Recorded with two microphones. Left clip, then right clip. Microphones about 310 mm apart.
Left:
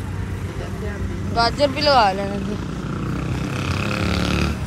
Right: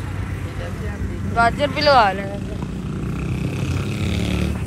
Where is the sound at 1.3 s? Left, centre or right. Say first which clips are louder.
Right 1 dB; centre.